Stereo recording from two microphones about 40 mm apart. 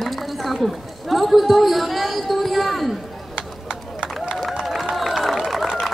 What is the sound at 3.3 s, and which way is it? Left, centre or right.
Clip-clop, right.